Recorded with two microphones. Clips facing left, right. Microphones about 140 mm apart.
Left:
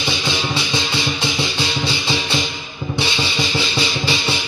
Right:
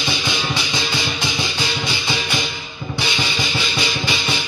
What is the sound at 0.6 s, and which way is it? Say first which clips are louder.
Music: left 2 dB; 30° left (ahead or behind).